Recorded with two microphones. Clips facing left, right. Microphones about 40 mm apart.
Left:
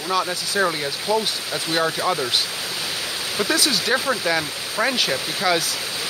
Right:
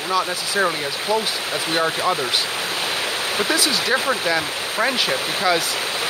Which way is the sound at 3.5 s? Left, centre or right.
Centre.